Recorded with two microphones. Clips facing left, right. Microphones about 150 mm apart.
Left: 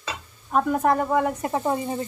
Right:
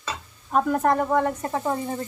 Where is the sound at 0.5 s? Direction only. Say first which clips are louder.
Even; centre (ahead or behind).